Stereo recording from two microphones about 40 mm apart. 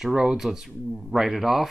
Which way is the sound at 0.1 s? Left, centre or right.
Centre.